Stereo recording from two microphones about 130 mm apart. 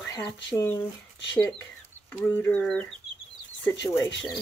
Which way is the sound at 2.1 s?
15° left (ahead or behind).